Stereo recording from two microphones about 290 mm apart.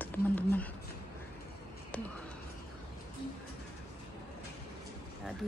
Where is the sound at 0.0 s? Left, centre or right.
Centre.